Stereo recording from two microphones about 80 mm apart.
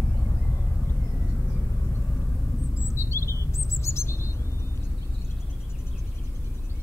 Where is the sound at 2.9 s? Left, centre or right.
Left.